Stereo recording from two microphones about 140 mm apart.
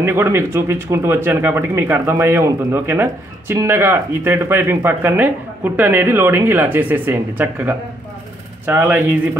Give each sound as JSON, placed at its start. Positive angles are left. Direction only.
{"t": 0.0, "sound": "speech", "side_deg": -15}